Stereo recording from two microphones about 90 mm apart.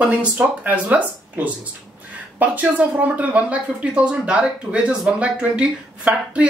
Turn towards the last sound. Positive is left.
turn(degrees=-15)  # may be behind; listen again after turning